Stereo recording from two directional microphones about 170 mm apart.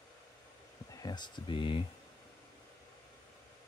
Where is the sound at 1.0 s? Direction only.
25° left (ahead or behind).